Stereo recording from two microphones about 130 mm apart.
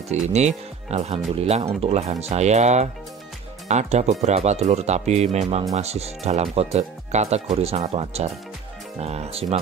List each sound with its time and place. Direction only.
0.1 s speech: 60° right (ahead or behind)